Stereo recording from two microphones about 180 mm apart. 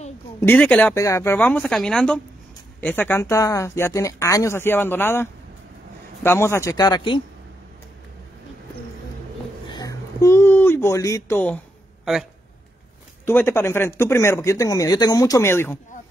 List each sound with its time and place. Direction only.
0.4 s speech: 10° left (ahead or behind)
9.7 s a sound: 20° left (ahead or behind)
12.0 s speech: centre (ahead or behind)
13.2 s speech: 10° left (ahead or behind)